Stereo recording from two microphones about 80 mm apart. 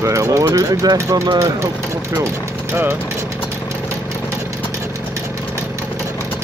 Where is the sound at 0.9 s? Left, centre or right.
Right.